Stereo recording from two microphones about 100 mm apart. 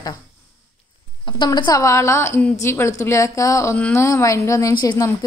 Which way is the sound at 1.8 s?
30° left (ahead or behind).